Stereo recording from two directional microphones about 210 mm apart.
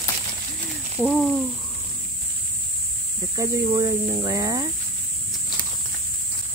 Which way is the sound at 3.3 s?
20° right (ahead or behind).